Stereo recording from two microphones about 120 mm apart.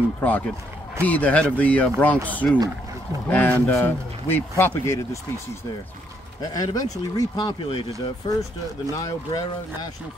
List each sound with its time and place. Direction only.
0.2 s speech: 15° left (ahead or behind)
6.4 s speech: 30° left (ahead or behind)